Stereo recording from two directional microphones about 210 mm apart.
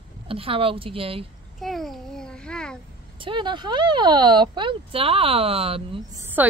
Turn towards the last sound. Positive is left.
turn(degrees=-10)  # may be behind; listen again after turning